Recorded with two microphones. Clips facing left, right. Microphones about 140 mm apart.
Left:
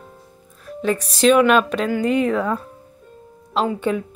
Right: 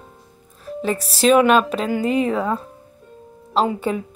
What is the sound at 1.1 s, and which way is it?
Speech, 5° right (ahead or behind).